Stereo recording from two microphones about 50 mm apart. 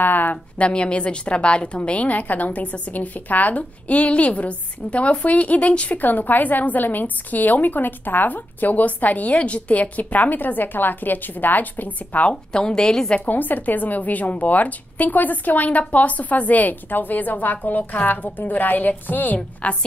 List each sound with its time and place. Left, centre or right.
0.0 s a sound: left
0.6 s a woman's voice: left
12.3 s a woman's voice: centre
13.3 s a woman's voice: left